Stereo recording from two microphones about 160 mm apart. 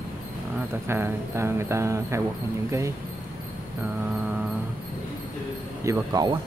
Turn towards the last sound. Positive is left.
turn(degrees=-20)  # may be behind; listen again after turning